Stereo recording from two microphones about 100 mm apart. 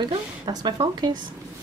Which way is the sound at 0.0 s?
40° right (ahead or behind).